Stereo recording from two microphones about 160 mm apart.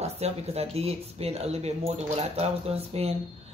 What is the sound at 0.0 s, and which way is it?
Speech, 40° right (ahead or behind).